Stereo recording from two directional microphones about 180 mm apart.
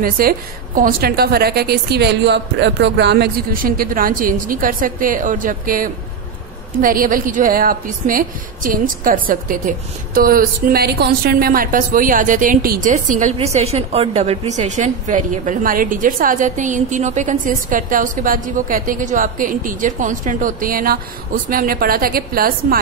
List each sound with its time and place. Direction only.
0.0 s a woman's voice: 55° right (ahead or behind)